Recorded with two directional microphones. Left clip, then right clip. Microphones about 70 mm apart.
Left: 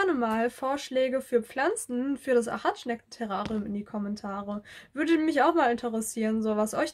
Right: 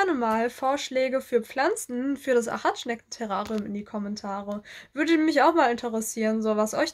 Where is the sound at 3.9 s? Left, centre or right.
Centre.